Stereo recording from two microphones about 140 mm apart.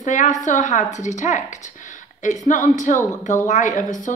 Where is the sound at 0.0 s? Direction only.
60° left (ahead or behind).